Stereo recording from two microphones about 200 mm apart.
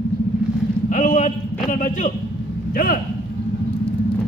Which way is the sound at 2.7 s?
45° left (ahead or behind).